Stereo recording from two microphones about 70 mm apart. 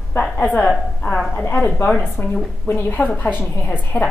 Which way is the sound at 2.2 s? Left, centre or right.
Left.